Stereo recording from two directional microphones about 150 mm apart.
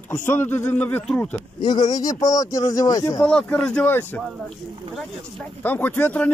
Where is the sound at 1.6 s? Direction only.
30° left (ahead or behind).